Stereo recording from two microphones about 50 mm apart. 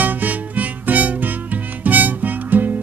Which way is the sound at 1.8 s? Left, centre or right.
Right.